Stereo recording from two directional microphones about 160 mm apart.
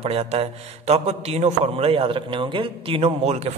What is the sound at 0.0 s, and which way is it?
A man's voice, 40° right (ahead or behind).